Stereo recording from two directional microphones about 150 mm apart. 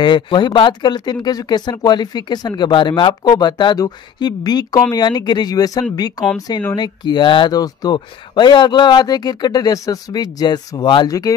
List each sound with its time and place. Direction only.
0.0 s speech: 30° left (ahead or behind)